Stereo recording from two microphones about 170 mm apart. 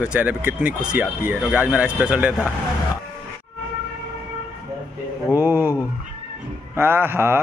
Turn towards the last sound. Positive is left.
turn(degrees=-15)  # may be behind; listen again after turning